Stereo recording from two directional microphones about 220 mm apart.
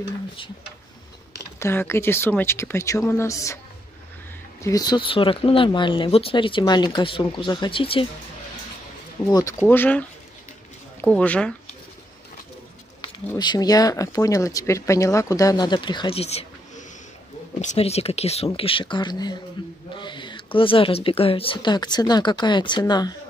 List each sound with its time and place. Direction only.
1.6 s speech: 10° left (ahead or behind)
4.6 s speech: 15° left (ahead or behind)
9.2 s speech: 15° left (ahead or behind)
13.4 s speech: 20° left (ahead or behind)